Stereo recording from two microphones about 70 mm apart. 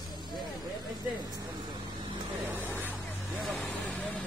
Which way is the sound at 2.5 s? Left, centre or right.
Right.